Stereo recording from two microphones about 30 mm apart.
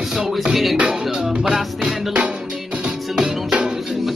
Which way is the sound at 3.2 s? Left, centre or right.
Right.